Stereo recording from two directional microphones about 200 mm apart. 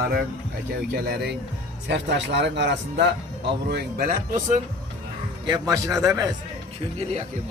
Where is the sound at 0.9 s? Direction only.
55° right (ahead or behind).